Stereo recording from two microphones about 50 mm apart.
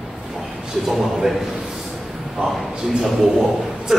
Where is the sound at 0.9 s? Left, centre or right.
Centre.